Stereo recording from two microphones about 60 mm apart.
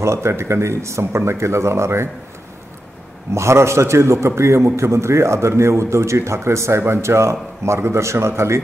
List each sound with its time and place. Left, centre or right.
0.0 s a man's voice: right
3.3 s a man's voice: right